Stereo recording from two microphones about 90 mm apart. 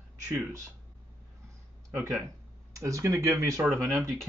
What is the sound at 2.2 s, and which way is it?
Speech, 35° right (ahead or behind).